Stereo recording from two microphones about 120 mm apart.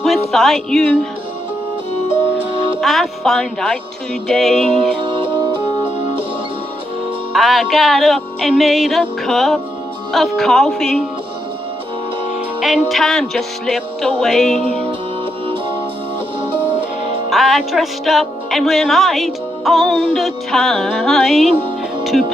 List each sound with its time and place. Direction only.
0.0 s music: centre (ahead or behind)
2.5 s music: 45° right (ahead or behind)
2.8 s speech: centre (ahead or behind)
5.0 s music: 45° right (ahead or behind)
7.3 s speech: centre (ahead or behind)
12.5 s speech: 5° right (ahead or behind)
14.6 s music: 60° right (ahead or behind)
17.3 s speech: centre (ahead or behind)